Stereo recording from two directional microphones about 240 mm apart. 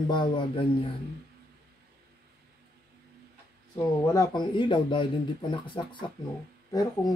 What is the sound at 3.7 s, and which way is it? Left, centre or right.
Speech, centre.